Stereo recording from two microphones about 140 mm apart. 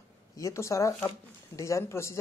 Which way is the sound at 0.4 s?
20° left (ahead or behind).